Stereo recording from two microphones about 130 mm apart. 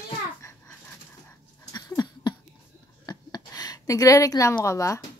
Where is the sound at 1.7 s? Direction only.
30° left (ahead or behind).